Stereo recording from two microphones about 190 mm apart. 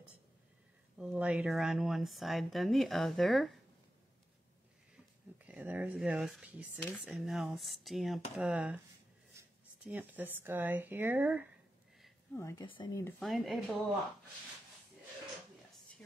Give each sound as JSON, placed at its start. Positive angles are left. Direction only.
{"t": 0.9, "sound": "speech", "side_deg": -5}
{"t": 5.4, "sound": "speech", "side_deg": -10}
{"t": 12.4, "sound": "a woman's voice", "side_deg": 15}
{"t": 13.2, "sound": "speech", "side_deg": 0}